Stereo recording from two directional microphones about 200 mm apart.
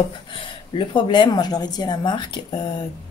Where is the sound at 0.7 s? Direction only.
25° left (ahead or behind).